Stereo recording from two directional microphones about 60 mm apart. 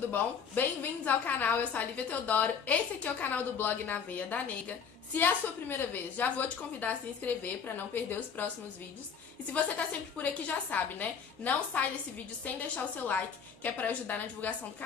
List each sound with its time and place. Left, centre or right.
0.1 s a woman's voice: left
10.1 s a woman's voice: left